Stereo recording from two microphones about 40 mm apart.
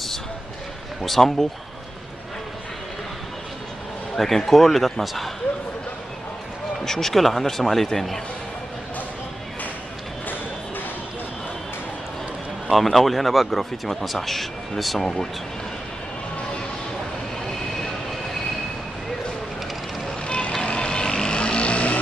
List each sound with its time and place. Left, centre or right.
1.0 s speech: centre
4.2 s speech: centre
6.8 s speech: centre
12.6 s speech: centre
20.2 s vehicle: left